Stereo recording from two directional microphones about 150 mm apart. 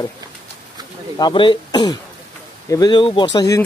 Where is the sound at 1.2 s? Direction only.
35° left (ahead or behind).